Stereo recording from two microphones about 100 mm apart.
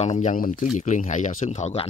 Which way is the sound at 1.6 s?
75° left (ahead or behind).